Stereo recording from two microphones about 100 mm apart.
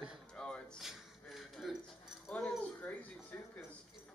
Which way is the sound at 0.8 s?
5° right (ahead or behind).